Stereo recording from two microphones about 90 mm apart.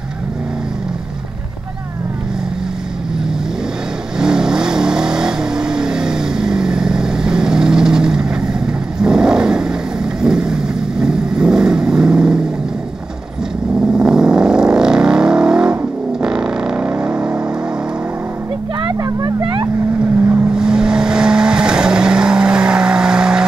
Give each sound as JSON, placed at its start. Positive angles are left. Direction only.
{"t": 4.2, "sound": "vehicle", "side_deg": -10}
{"t": 13.7, "sound": "vehicle", "side_deg": -10}
{"t": 18.9, "sound": "vehicle", "side_deg": -40}
{"t": 20.2, "sound": "vehicle", "side_deg": -15}